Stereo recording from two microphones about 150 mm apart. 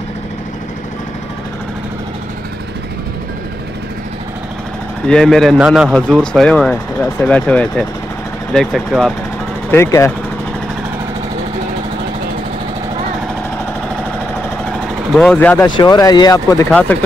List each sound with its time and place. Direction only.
5.0 s a man's voice: 5° left (ahead or behind)
9.7 s speech: 20° left (ahead or behind)
15.1 s speech: 10° left (ahead or behind)
15.6 s speech: 25° left (ahead or behind)